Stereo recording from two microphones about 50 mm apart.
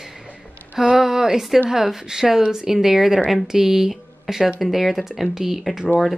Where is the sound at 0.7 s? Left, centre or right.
Centre.